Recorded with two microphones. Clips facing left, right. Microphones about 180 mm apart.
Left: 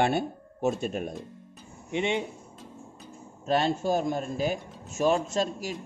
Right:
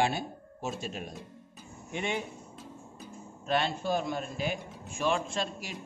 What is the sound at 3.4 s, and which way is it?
A man's voice, 40° left (ahead or behind).